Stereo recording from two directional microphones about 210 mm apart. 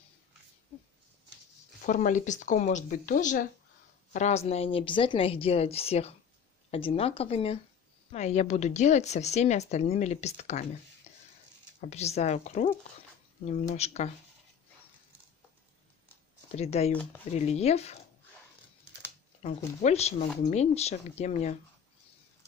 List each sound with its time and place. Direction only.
1.8 s a woman's voice: 40° left (ahead or behind)
11.1 s stir: 30° left (ahead or behind)
11.9 s a woman's voice: 30° left (ahead or behind)
16.5 s a woman's voice: 30° left (ahead or behind)
19.4 s a woman's voice: 30° left (ahead or behind)